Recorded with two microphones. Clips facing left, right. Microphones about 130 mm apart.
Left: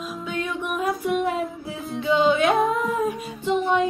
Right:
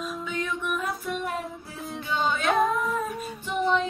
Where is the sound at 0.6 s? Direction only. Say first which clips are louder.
Left 5 dB; 55° left (ahead or behind).